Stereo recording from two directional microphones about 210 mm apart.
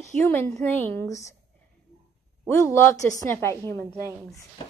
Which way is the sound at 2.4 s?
10° left (ahead or behind).